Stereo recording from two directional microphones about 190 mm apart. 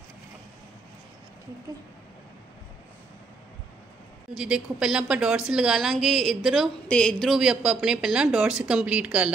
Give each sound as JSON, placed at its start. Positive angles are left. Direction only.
{"t": 4.4, "sound": "a woman's voice", "side_deg": -5}